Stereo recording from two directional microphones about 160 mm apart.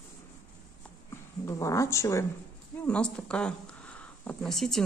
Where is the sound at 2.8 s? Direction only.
5° left (ahead or behind).